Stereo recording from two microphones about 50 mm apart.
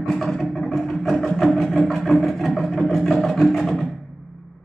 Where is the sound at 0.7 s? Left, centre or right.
Centre.